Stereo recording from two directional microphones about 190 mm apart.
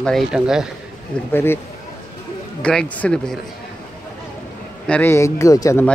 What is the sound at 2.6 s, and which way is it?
Speech, 5° left (ahead or behind).